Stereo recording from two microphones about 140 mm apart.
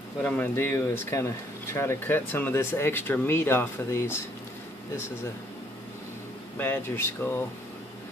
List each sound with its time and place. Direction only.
0.2 s speech: 10° left (ahead or behind)
6.6 s speech: 15° left (ahead or behind)